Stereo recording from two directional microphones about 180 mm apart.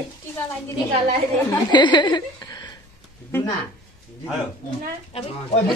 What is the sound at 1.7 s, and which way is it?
Speech, 25° left (ahead or behind).